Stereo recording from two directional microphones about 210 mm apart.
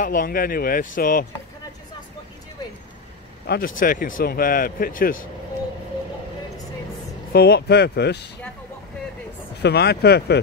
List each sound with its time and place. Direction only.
0.0 s speech: 45° left (ahead or behind)
3.4 s speech: 45° left (ahead or behind)
7.3 s speech: 50° left (ahead or behind)
9.6 s speech: 50° left (ahead or behind)